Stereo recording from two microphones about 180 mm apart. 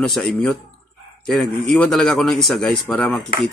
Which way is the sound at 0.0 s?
Centre (ahead or behind).